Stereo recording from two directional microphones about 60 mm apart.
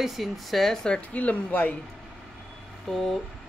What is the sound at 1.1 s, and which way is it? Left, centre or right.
Speech, left.